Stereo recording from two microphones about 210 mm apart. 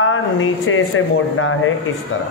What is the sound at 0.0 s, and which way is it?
Speech, 70° left (ahead or behind).